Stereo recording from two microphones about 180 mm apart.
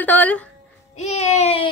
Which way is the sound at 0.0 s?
10° left (ahead or behind).